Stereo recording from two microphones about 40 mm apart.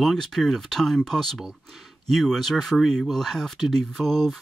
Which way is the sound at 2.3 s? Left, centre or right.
Centre.